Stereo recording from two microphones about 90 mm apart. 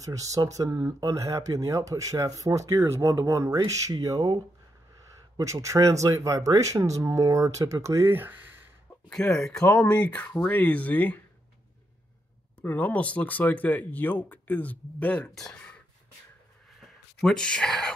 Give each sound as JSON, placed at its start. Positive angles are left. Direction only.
{"t": 0.0, "sound": "speech", "side_deg": -40}
{"t": 5.4, "sound": "speech", "side_deg": -35}
{"t": 9.1, "sound": "speech", "side_deg": 5}
{"t": 12.6, "sound": "speech", "side_deg": 20}
{"t": 15.5, "sound": "a sound", "side_deg": 10}
{"t": 16.8, "sound": "speech", "side_deg": 5}